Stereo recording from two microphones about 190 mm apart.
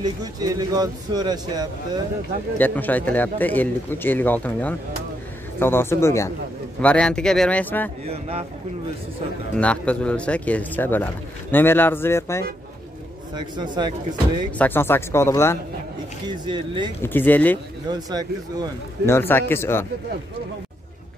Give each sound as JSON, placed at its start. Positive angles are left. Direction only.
{"t": 0.0, "sound": "a man's voice", "side_deg": -20}
{"t": 2.6, "sound": "speech", "side_deg": 10}
{"t": 8.1, "sound": "a man's voice", "side_deg": -30}
{"t": 9.6, "sound": "speech", "side_deg": 5}
{"t": 13.3, "sound": "a man's voice", "side_deg": -25}
{"t": 14.6, "sound": "speech", "side_deg": 10}
{"t": 16.3, "sound": "a man's voice", "side_deg": -25}
{"t": 17.0, "sound": "speech", "side_deg": 10}
{"t": 17.8, "sound": "a man's voice", "side_deg": -20}
{"t": 19.0, "sound": "speech", "side_deg": 10}